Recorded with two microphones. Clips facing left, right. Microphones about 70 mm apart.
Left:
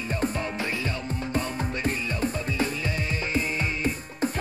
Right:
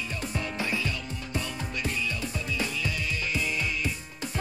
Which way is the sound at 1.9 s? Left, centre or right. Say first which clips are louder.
Left 4 dB; left.